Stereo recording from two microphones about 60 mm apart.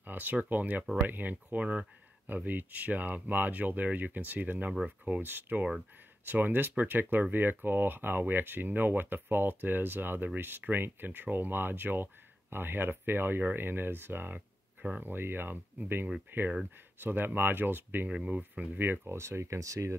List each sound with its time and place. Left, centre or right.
0.0 s speech: right
18.1 s speech: centre
18.5 s speech: right
19.1 s speech: right